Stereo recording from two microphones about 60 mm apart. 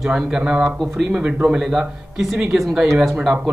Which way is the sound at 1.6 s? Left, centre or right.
Centre.